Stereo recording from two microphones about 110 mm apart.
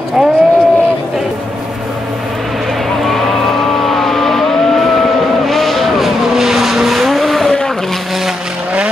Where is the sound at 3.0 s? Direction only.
5° left (ahead or behind).